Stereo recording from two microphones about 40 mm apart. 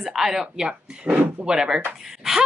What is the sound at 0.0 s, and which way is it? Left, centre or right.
Speech, centre.